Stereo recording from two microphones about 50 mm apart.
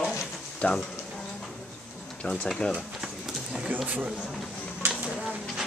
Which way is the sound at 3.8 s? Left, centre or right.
Right.